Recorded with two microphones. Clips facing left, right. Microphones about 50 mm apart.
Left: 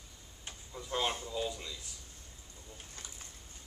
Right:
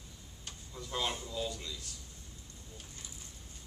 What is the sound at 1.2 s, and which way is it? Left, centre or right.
Speech, centre.